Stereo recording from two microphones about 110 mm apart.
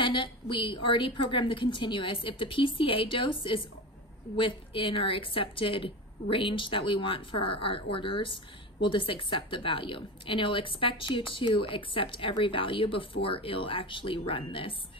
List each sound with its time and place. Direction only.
0.0 s a woman's voice: 50° left (ahead or behind)